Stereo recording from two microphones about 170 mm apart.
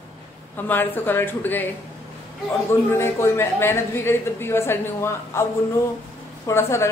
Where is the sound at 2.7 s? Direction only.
15° left (ahead or behind).